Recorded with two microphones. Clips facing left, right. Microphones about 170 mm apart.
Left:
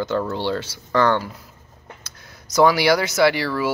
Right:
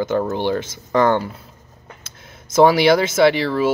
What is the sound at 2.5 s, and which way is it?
Speech, 25° right (ahead or behind).